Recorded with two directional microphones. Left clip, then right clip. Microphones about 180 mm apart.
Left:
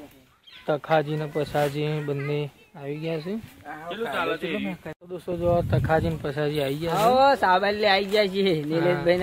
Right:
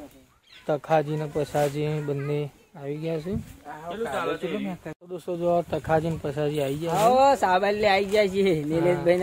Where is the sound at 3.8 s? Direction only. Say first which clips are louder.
Left 1 dB; 80° right.